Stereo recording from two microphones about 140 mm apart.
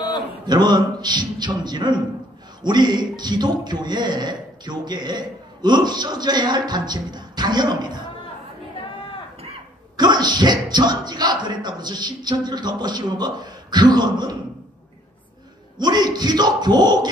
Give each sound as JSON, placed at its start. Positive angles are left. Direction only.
{"t": 0.5, "sound": "speech", "side_deg": -30}
{"t": 9.9, "sound": "speech", "side_deg": -30}
{"t": 15.8, "sound": "speech", "side_deg": -30}